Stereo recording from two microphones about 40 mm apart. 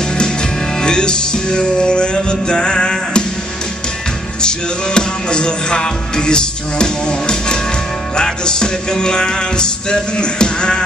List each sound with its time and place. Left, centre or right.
0.7 s music: left
4.4 s music: left